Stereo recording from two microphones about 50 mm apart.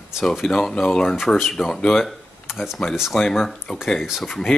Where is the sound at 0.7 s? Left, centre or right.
Centre.